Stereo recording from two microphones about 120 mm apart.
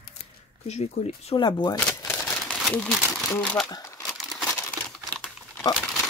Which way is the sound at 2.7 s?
5° left (ahead or behind).